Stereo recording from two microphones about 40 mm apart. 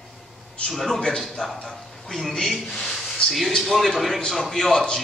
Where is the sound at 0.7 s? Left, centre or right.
Centre.